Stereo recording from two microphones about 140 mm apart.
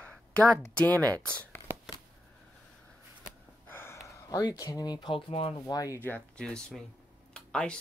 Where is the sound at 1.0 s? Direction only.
25° right (ahead or behind).